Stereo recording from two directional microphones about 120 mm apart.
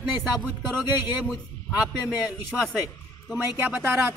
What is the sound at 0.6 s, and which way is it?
Speech, 35° left (ahead or behind).